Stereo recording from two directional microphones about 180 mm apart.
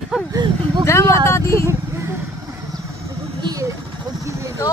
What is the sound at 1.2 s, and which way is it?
Speech, 15° left (ahead or behind).